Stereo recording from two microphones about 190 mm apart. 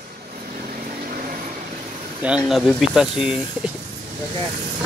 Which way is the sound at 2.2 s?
5° right (ahead or behind).